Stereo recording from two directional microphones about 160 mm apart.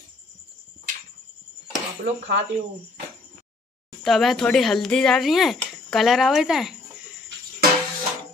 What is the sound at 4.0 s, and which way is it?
Speech, centre (ahead or behind).